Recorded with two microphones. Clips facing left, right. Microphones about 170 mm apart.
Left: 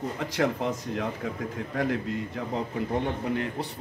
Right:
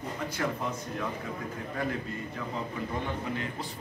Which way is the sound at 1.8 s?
85° left.